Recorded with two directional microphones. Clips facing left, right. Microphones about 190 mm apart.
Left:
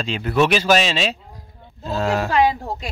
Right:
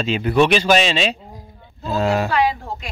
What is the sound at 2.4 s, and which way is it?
Speech, 40° left (ahead or behind).